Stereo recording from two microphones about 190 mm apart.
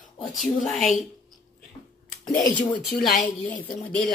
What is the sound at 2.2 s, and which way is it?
Speech, 5° left (ahead or behind).